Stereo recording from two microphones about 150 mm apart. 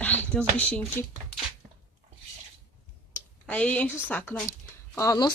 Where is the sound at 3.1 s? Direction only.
10° left (ahead or behind).